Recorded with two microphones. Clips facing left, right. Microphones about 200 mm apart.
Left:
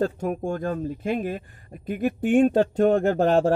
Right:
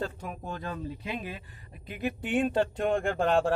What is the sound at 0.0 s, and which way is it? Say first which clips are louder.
A man's voice: left 11 dB; 45° left (ahead or behind).